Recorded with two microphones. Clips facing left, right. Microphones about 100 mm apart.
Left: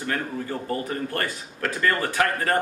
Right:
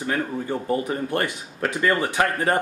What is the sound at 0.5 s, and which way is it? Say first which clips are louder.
Speech: right 5 dB; 20° right (ahead or behind).